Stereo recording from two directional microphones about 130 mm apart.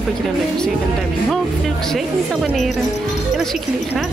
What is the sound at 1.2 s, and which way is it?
A woman's voice, centre (ahead or behind).